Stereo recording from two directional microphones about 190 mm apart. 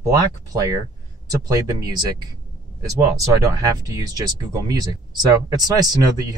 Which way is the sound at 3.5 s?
20° right (ahead or behind).